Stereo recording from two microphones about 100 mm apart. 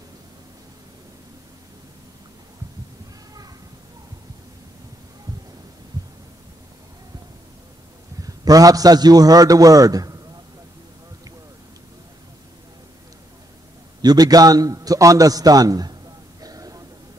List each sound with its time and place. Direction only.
8.2 s a man's voice: 35° right (ahead or behind)
14.0 s a man's voice: 40° right (ahead or behind)